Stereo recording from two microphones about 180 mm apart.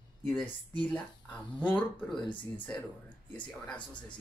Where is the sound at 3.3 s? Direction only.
5° left (ahead or behind).